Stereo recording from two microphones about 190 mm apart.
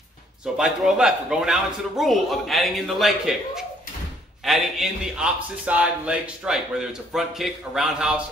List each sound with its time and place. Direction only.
0.6 s a man's voice: 5° right (ahead or behind)